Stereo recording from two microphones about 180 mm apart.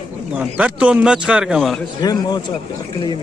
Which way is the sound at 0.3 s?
5° right (ahead or behind).